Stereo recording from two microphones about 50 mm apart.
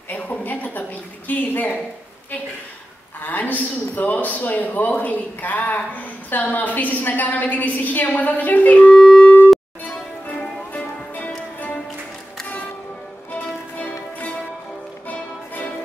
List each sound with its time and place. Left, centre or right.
0.1 s a sound: left
3.3 s a man's voice: left
8.9 s music: centre
10.7 s music: left
13.3 s music: left
15.0 s music: left